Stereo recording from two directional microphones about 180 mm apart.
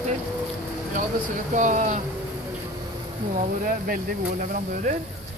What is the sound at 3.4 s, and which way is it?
Speech, 50° right (ahead or behind).